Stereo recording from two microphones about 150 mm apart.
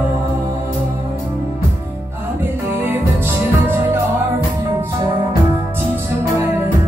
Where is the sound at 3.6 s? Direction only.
15° right (ahead or behind).